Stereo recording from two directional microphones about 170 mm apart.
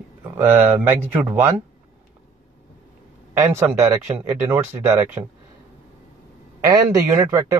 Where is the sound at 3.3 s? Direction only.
15° right (ahead or behind).